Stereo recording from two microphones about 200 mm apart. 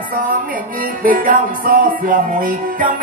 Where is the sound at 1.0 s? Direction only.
40° right (ahead or behind).